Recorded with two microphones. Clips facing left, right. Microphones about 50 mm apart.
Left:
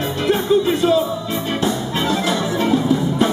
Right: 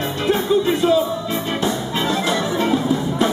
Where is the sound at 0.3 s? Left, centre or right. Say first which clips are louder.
Left 1 dB; centre.